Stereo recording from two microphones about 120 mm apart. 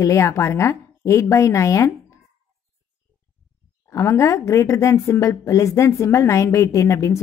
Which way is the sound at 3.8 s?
25° left (ahead or behind).